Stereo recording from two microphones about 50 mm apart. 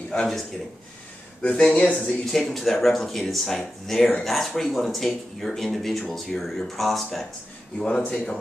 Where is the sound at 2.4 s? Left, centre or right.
Centre.